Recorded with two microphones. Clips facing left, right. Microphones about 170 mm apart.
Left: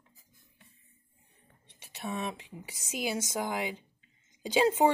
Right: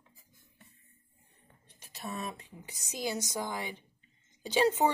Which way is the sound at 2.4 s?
90° left.